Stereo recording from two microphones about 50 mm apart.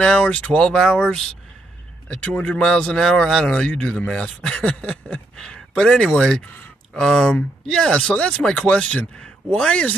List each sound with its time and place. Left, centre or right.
0.0 s speech: centre
2.0 s speech: left